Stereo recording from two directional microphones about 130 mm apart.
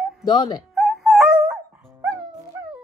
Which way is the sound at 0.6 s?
Centre (ahead or behind).